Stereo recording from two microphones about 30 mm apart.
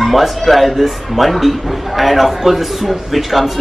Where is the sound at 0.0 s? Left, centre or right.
Centre.